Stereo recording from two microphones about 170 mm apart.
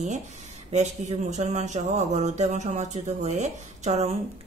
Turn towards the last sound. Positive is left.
turn(degrees=-40)  # may be behind; listen again after turning